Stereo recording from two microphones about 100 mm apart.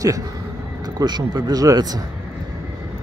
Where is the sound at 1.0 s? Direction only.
45° right (ahead or behind).